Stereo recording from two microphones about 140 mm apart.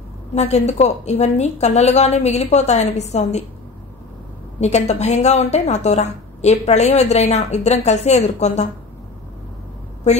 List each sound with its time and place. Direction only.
0.3 s a woman's voice: 55° left (ahead or behind)
4.6 s a woman's voice: 50° left (ahead or behind)